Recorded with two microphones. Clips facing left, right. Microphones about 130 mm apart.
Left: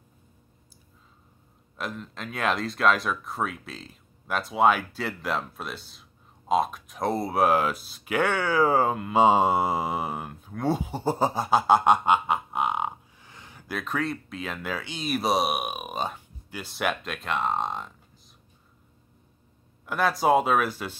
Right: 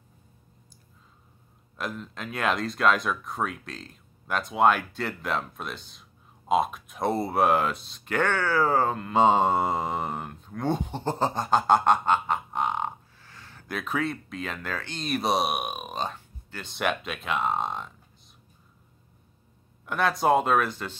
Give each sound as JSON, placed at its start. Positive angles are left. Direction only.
{"t": 1.8, "sound": "speech", "side_deg": 0}
{"t": 13.2, "sound": "a sound", "side_deg": 15}
{"t": 13.7, "sound": "speech", "side_deg": 0}
{"t": 19.9, "sound": "speech", "side_deg": 5}